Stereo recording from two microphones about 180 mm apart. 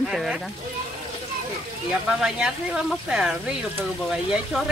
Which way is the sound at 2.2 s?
5° right (ahead or behind).